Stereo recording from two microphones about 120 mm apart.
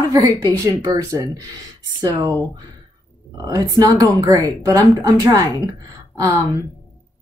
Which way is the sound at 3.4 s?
30° right (ahead or behind).